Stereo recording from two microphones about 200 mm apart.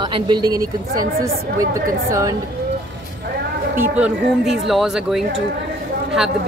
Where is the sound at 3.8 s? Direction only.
5° right (ahead or behind).